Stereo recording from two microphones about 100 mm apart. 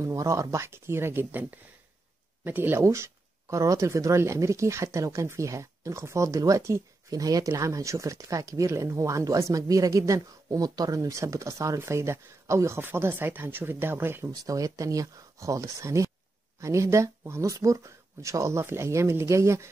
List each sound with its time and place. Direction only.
0.0 s speech: 30° right (ahead or behind)
14.3 s speech: 35° right (ahead or behind)